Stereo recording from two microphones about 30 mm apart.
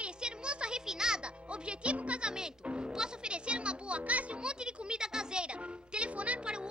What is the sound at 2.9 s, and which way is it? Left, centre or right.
Speech, right.